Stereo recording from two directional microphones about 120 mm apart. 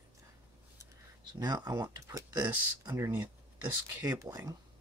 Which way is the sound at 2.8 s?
25° right (ahead or behind).